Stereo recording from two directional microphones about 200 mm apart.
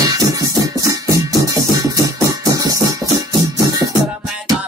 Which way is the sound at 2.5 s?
15° right (ahead or behind).